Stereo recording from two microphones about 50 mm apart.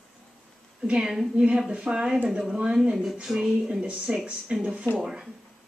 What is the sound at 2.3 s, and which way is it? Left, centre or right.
Speech, centre.